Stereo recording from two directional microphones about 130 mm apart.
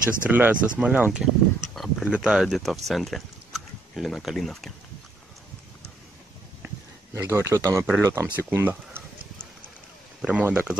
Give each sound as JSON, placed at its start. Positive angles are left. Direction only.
{"t": 0.3, "sound": "speech", "side_deg": -15}
{"t": 7.2, "sound": "speech", "side_deg": -20}
{"t": 10.2, "sound": "speech", "side_deg": -10}